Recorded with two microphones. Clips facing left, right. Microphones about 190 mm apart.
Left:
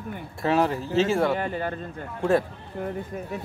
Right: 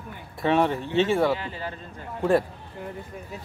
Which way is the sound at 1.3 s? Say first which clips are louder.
Left 3 dB; 55° left (ahead or behind).